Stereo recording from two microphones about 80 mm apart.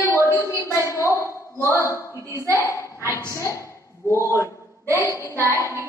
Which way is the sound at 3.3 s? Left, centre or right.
Left.